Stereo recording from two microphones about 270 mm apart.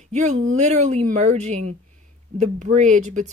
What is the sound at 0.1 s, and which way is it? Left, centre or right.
Speech, right.